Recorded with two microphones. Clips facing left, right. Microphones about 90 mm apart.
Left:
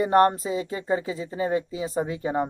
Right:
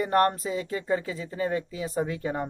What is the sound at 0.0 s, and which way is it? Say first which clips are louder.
Speech: left 4 dB; 10° left (ahead or behind).